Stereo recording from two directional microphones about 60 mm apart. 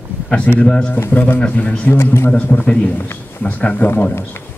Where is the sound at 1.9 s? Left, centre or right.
Left.